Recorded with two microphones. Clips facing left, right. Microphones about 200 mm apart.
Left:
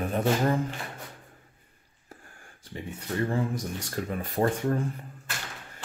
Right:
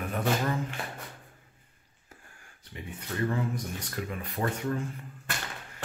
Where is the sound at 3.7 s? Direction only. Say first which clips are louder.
Left 4 dB; 45° left (ahead or behind).